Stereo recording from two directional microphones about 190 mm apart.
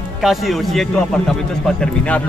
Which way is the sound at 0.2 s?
Centre (ahead or behind).